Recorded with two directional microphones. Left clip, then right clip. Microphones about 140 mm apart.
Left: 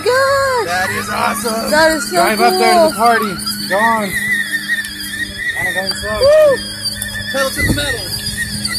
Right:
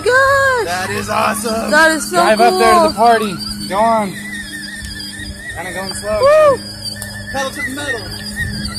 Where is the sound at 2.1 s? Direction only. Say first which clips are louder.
Right 1 dB; 40° right (ahead or behind).